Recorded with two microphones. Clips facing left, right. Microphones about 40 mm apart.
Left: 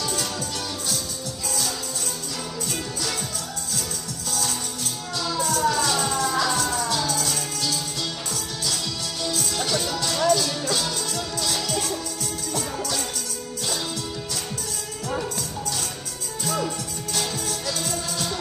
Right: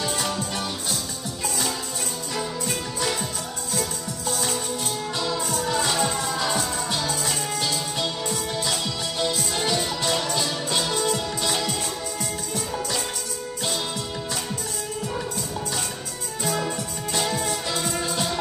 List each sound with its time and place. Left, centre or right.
0.0 s music: right
4.3 s music: right
16.4 s music: right